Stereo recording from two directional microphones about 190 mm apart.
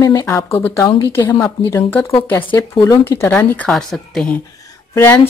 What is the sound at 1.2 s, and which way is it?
Speech, 25° left (ahead or behind).